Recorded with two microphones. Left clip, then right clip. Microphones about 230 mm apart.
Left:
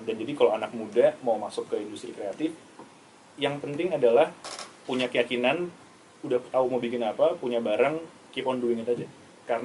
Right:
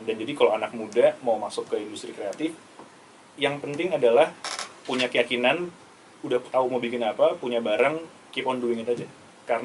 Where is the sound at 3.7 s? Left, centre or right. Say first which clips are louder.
Right 1 dB; centre.